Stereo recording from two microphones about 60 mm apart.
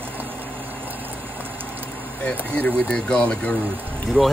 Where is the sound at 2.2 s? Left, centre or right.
Centre.